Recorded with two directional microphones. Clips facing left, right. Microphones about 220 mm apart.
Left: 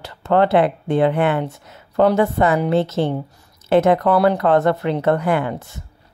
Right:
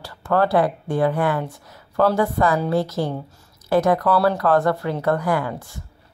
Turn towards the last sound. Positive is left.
turn(degrees=25)  # may be behind; listen again after turning